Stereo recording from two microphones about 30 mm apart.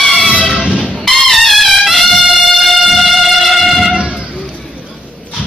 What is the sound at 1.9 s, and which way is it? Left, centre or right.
Music, centre.